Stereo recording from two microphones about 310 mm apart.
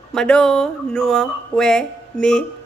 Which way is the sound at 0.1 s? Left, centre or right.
Centre.